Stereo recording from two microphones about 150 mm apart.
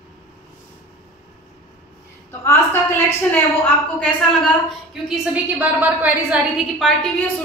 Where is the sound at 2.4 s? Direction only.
15° left (ahead or behind).